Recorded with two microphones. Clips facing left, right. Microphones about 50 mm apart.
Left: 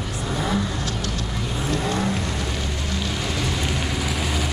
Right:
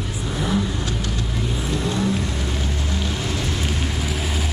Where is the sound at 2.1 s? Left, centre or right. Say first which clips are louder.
Right 1 dB; centre.